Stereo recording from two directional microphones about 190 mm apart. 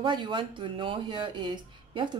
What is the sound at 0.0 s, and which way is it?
A woman's voice, 25° right (ahead or behind).